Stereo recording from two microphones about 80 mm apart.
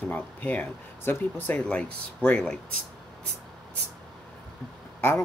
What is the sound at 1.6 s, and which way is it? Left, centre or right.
Speech, centre.